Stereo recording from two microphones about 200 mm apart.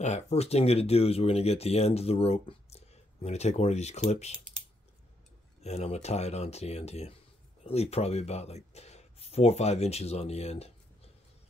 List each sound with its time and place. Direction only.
0.0 s speech: 35° left (ahead or behind)
5.6 s speech: 35° left (ahead or behind)